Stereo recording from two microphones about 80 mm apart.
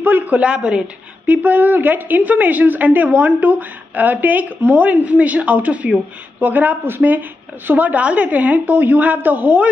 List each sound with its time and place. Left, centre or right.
0.0 s a woman's voice: right